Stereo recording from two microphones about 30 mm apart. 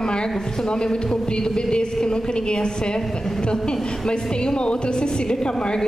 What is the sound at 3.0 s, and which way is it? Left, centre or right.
Speech, centre.